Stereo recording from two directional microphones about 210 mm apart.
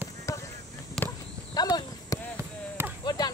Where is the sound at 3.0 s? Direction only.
20° left (ahead or behind).